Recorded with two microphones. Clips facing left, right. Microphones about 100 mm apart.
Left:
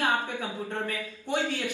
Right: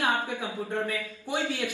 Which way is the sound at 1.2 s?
15° right (ahead or behind).